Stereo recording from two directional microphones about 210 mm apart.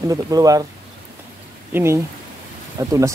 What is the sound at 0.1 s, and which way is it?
Speech, 15° right (ahead or behind).